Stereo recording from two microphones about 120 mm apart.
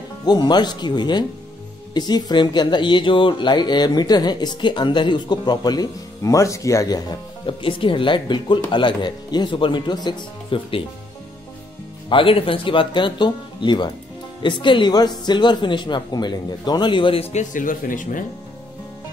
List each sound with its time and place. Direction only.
0.2 s speech: 35° left (ahead or behind)
7.4 s speech: 45° left (ahead or behind)
12.1 s speech: 45° left (ahead or behind); by 18.2 s 90° left